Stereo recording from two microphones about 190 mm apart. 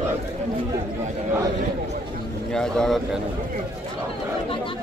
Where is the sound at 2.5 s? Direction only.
5° left (ahead or behind).